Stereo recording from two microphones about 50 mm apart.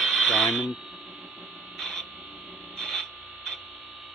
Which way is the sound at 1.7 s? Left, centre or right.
Centre.